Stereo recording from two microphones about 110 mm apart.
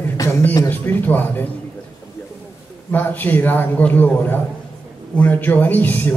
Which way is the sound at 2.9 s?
15° left (ahead or behind).